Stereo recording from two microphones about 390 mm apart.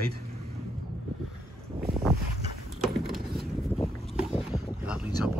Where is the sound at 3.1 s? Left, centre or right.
Centre.